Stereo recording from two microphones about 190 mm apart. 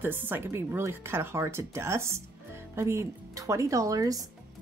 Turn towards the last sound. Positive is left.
turn(degrees=-20)  # may be behind; listen again after turning